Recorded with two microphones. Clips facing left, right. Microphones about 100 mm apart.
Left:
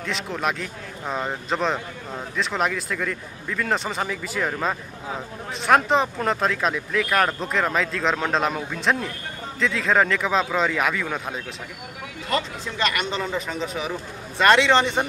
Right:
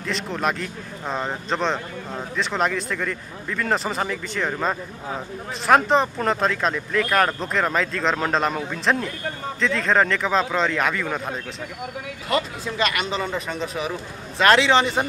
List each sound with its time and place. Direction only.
0.0 s a man's voice: centre (ahead or behind)